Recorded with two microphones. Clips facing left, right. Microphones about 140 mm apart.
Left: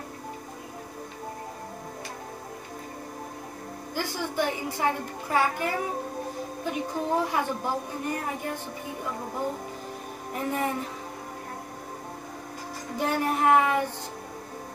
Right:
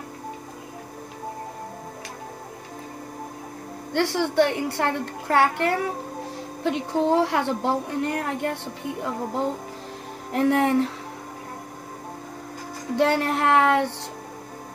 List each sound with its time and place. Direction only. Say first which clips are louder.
3.9 s speech: right 9 dB; 75° right (ahead or behind)
10.3 s speech: right 9 dB; 75° right (ahead or behind)
12.9 s speech: right 5 dB; 75° right (ahead or behind)